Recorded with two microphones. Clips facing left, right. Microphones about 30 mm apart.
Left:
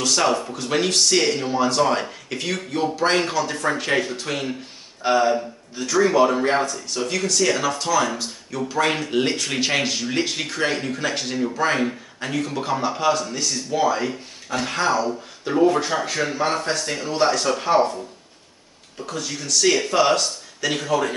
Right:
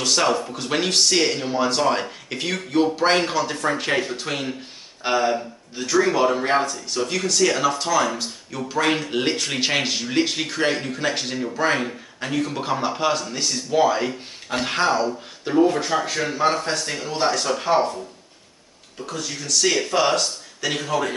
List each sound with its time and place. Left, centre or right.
0.0 s speech: centre
0.3 s speech: centre
0.6 s speech: centre
15.0 s speech: centre
18.9 s speech: centre